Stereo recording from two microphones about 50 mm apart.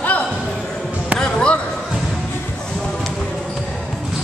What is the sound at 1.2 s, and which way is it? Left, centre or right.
Basketball bounce, centre.